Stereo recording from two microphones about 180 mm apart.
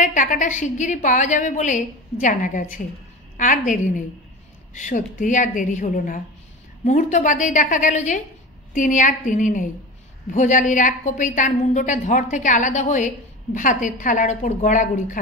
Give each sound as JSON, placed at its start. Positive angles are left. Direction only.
{"t": 0.0, "sound": "a woman's voice", "side_deg": 45}